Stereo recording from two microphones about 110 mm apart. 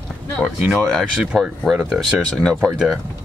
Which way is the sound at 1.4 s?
5° right (ahead or behind).